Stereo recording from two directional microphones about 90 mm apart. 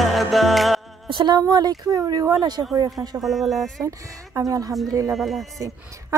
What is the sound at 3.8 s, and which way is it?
Speech, 35° right (ahead or behind).